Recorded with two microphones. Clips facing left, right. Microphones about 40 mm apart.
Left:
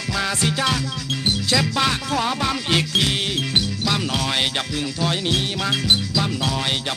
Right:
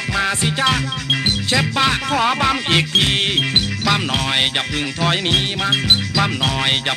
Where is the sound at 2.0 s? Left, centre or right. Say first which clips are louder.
Right 5 dB; right.